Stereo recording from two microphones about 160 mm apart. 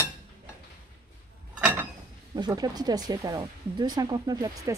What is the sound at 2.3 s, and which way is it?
Speech, 25° right (ahead or behind).